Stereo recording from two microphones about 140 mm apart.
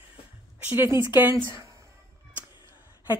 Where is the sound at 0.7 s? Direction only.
15° right (ahead or behind).